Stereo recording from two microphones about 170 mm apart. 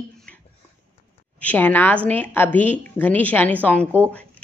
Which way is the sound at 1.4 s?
10° left (ahead or behind).